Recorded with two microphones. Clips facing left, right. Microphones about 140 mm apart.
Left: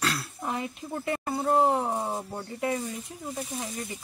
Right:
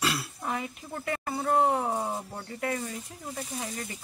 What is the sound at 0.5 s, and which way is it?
Speech, 20° left (ahead or behind).